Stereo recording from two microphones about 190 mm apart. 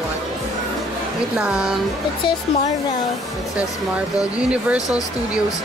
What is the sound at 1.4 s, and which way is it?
Speech, 5° right (ahead or behind).